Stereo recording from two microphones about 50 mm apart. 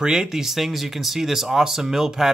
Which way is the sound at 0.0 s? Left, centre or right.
Centre.